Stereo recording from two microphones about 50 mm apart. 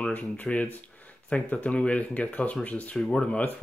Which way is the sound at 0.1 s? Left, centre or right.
Left.